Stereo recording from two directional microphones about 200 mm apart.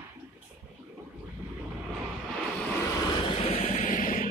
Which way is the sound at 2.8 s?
15° left (ahead or behind).